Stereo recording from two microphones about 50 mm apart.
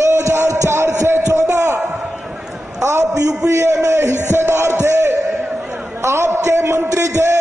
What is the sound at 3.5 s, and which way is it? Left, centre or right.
Speech, right.